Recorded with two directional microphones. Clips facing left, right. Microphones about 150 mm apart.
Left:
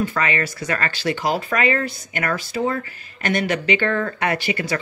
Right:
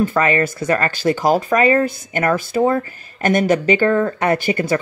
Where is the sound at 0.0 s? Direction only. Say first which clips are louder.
Right 6 dB; 45° right (ahead or behind).